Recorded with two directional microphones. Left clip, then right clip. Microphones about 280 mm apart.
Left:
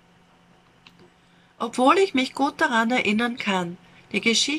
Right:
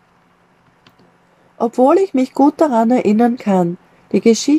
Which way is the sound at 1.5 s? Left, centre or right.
Right.